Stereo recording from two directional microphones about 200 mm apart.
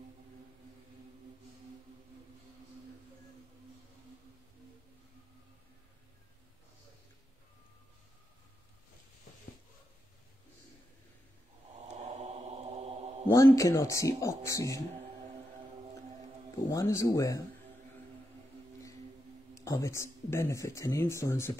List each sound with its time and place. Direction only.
12.0 s a sound: 35° right (ahead or behind)
13.3 s speech: 15° left (ahead or behind)
16.6 s speech: 15° left (ahead or behind)
19.5 s speech: 15° left (ahead or behind)